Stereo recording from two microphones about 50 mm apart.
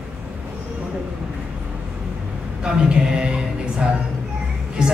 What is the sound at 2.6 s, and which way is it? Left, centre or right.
A man's voice, centre.